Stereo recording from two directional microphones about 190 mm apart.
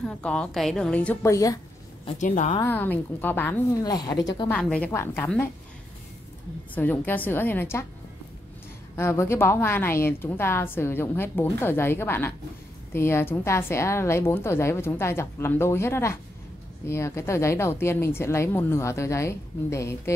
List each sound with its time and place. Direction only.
0.2 s a woman's voice: 5° left (ahead or behind)
2.1 s a woman's voice: 40° left (ahead or behind)
2.6 s a woman's voice: 10° left (ahead or behind)
3.8 s speech: 20° left (ahead or behind)
4.5 s a woman's voice: 5° left (ahead or behind)
6.7 s a woman's voice: 10° left (ahead or behind)
8.9 s a woman's voice: 15° left (ahead or behind)